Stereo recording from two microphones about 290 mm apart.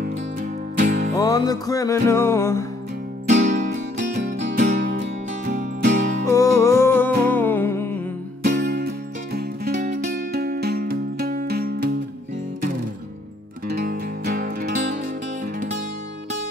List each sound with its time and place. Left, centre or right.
0.0 s music: right
1.1 s music: centre
3.3 s music: right
6.2 s music: centre
8.4 s music: right
13.7 s music: right